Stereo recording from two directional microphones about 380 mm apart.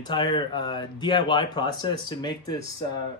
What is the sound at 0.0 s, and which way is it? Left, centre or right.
Speech, centre.